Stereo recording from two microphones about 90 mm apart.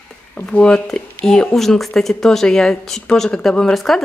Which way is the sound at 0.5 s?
10° left (ahead or behind).